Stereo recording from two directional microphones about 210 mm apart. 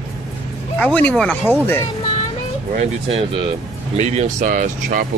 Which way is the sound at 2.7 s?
30° right (ahead or behind).